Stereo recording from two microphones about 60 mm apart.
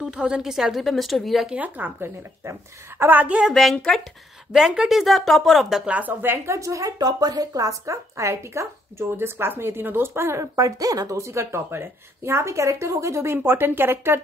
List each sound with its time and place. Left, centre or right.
0.0 s a woman's voice: centre
1.5 s speech: right
3.0 s speech: right
3.3 s a woman's voice: centre
5.9 s speech: right
6.2 s speech: right
10.4 s speech: right
13.5 s speech: right